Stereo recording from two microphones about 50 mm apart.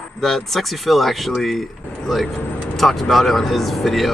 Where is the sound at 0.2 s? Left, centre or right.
Centre.